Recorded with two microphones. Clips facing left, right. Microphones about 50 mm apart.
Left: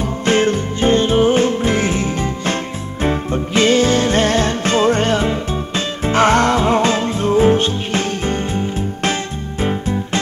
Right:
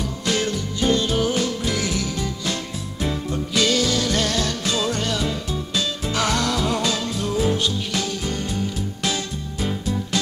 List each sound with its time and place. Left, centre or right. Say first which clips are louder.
0.0 s music: left 8 dB; left